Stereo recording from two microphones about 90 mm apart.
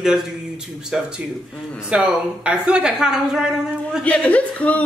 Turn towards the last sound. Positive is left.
turn(degrees=15)  # may be behind; listen again after turning